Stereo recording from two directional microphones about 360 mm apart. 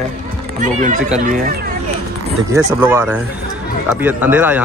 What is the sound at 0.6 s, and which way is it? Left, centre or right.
Speech, right.